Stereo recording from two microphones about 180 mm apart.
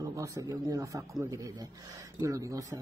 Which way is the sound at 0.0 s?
20° right (ahead or behind).